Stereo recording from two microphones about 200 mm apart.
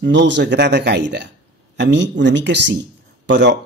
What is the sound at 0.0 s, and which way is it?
Speech, 60° right (ahead or behind).